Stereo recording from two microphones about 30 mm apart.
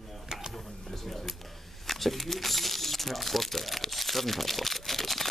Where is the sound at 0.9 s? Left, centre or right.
Centre.